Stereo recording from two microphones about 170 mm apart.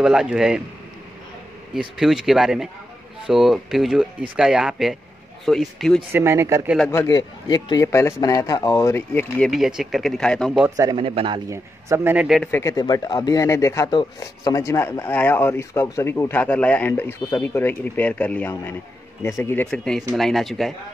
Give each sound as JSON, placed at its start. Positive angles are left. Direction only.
{"t": 0.0, "sound": "speech", "side_deg": -5}
{"t": 1.8, "sound": "speech", "side_deg": -5}
{"t": 6.1, "sound": "a man's voice", "side_deg": -15}
{"t": 6.9, "sound": "a man's voice", "side_deg": 20}
{"t": 9.5, "sound": "speech", "side_deg": 0}
{"t": 10.8, "sound": "speech", "side_deg": -25}
{"t": 11.5, "sound": "a man's voice", "side_deg": -15}
{"t": 12.4, "sound": "a man's voice", "side_deg": 15}